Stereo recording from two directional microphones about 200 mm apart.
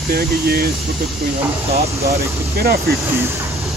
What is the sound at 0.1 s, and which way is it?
Speech, 50° right (ahead or behind).